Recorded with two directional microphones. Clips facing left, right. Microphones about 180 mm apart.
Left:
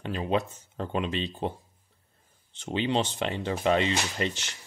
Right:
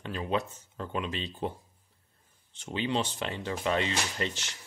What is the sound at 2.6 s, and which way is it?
Speech, 25° left (ahead or behind).